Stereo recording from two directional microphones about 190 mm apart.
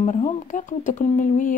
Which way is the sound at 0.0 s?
40° left (ahead or behind).